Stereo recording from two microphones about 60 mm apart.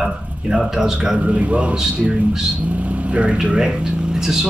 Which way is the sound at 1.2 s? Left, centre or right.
Right.